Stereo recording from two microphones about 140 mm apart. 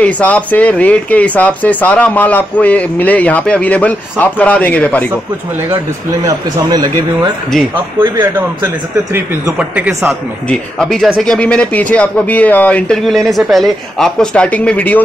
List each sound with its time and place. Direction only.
0.0 s speech: 10° left (ahead or behind)
6.2 s speech: 30° right (ahead or behind)
8.0 s a man's voice: 15° right (ahead or behind)
10.5 s speech: 5° left (ahead or behind)